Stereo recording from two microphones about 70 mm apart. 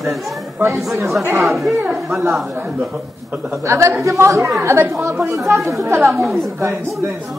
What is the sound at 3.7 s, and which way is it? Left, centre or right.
Speech, right.